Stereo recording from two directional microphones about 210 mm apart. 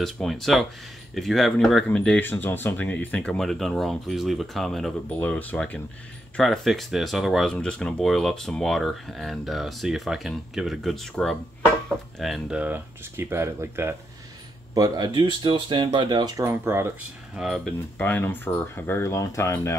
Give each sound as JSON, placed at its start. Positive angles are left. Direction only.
{"t": 0.0, "sound": "speech", "side_deg": 0}
{"t": 17.4, "sound": "speech", "side_deg": 0}